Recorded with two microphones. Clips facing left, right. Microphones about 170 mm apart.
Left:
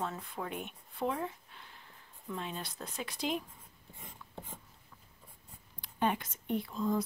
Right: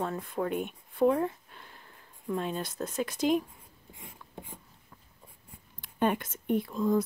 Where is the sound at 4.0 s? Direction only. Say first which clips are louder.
Right 2 dB; 10° right (ahead or behind).